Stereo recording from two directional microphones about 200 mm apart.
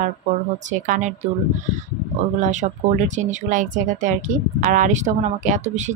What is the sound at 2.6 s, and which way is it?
Speech, 40° right (ahead or behind).